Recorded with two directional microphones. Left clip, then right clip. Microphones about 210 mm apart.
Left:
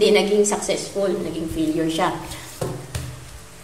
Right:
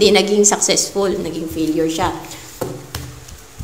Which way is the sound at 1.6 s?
10° right (ahead or behind).